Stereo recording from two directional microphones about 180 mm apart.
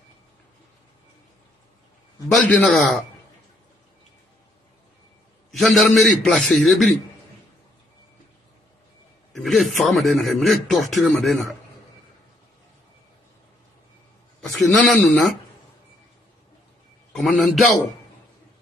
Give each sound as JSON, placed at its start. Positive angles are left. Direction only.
{"t": 2.3, "sound": "a man's voice", "side_deg": 0}
{"t": 5.5, "sound": "a man's voice", "side_deg": 0}
{"t": 9.3, "sound": "a man's voice", "side_deg": 0}
{"t": 14.4, "sound": "a man's voice", "side_deg": 5}
{"t": 17.1, "sound": "a man's voice", "side_deg": 0}